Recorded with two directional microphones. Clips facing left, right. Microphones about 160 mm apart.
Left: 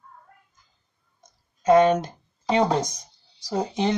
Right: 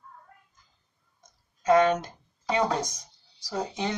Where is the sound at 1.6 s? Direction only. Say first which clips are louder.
Left 4 dB; 20° left (ahead or behind).